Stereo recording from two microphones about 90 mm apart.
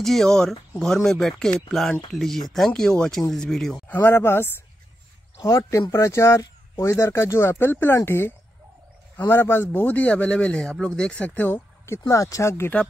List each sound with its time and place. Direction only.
0.0 s speech: 5° left (ahead or behind)
3.9 s speech: 25° left (ahead or behind)